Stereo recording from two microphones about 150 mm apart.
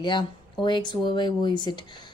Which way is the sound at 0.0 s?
30° left (ahead or behind).